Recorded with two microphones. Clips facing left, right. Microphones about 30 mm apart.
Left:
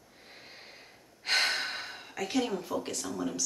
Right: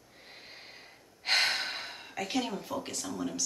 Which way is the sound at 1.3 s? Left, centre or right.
Centre.